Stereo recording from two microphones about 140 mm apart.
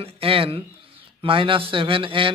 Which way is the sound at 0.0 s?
40° right (ahead or behind).